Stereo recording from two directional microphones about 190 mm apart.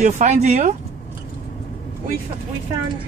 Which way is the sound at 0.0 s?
35° right (ahead or behind).